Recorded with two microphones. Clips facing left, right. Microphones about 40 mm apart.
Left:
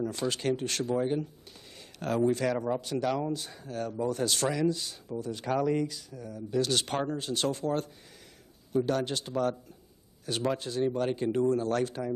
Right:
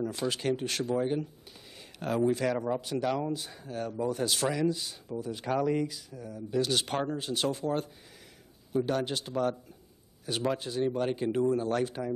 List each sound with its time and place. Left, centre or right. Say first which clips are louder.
0.0 s speech: even; centre